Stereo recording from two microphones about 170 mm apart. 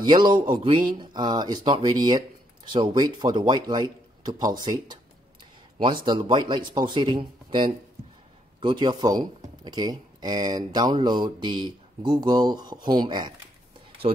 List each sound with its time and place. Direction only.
0.0 s speech: 25° right (ahead or behind)